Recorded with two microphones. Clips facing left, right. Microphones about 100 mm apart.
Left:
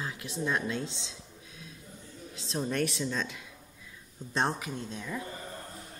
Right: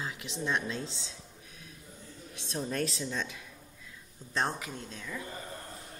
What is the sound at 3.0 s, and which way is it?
Speech, 15° right (ahead or behind).